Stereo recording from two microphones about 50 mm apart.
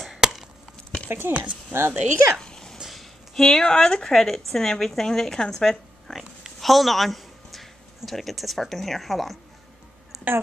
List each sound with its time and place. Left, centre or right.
0.0 s chop: centre
1.0 s speech: right
1.3 s speech: right
1.7 s a woman's voice: right
2.4 s a sound: centre
2.8 s a sound: centre
3.4 s speech: centre
6.1 s speech: centre
10.1 s a sound: centre